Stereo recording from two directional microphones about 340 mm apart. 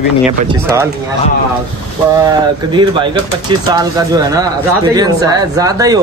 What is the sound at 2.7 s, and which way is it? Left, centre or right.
Speech, centre.